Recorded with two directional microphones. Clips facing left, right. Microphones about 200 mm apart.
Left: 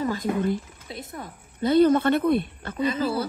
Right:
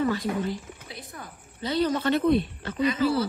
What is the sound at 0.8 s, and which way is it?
Speech, 25° left (ahead or behind).